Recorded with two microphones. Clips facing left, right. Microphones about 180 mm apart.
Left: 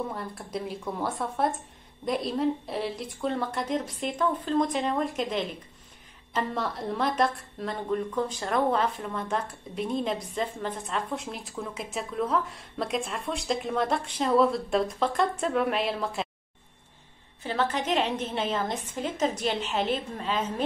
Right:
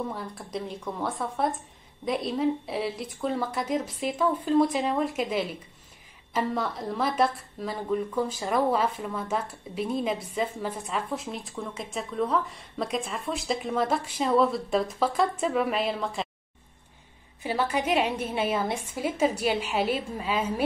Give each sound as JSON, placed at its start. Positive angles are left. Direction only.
{"t": 0.1, "sound": "a woman's voice", "side_deg": 0}
{"t": 17.4, "sound": "a woman's voice", "side_deg": -10}